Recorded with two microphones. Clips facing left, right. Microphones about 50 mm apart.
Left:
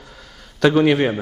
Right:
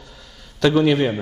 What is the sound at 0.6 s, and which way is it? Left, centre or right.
Speech, centre.